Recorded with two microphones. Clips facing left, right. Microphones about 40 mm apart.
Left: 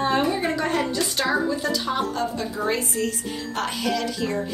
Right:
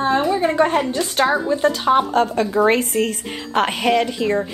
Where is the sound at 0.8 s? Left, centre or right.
Right.